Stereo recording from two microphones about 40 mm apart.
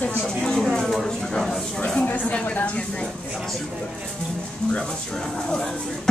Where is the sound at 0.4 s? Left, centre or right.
Centre.